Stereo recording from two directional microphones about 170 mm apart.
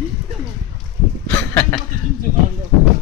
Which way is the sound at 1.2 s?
10° left (ahead or behind).